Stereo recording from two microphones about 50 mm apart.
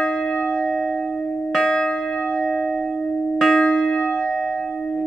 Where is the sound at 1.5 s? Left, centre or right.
Centre.